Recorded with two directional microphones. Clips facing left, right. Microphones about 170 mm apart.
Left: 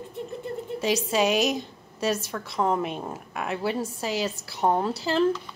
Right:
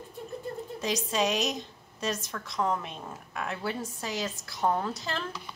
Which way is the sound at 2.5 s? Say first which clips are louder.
Left 4 dB; 30° left (ahead or behind).